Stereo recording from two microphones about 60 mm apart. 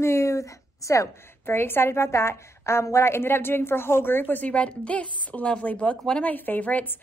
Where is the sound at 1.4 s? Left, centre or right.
Left.